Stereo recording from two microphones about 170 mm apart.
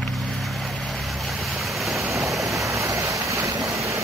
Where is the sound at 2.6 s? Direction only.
20° right (ahead or behind).